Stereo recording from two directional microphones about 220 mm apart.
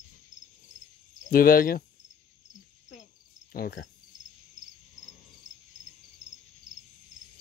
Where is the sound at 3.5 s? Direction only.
55° left (ahead or behind).